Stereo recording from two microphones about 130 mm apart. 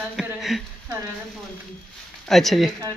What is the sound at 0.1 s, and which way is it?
Speech, centre (ahead or behind).